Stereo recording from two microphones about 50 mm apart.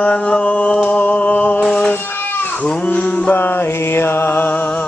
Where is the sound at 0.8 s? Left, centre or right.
Left.